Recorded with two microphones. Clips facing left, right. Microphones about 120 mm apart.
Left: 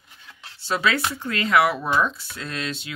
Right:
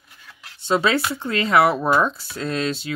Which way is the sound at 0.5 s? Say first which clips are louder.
Right 4 dB; 25° right (ahead or behind).